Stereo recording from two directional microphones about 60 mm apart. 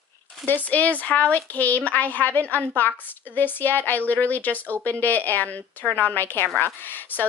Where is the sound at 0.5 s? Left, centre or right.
Left.